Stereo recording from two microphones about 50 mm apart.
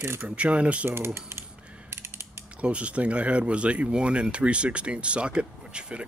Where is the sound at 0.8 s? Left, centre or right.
Right.